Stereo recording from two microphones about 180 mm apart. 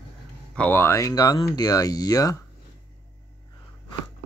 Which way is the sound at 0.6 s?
10° left (ahead or behind).